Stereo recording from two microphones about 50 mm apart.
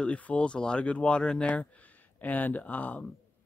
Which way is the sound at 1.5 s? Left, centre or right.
Left.